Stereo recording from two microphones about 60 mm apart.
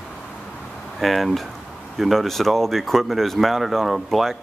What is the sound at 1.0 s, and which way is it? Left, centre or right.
Speech, centre.